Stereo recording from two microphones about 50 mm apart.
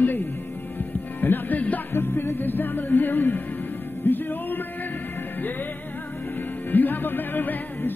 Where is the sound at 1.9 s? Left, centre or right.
Left.